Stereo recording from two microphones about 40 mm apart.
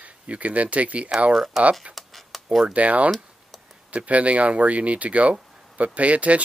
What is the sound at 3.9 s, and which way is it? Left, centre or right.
Speech, right.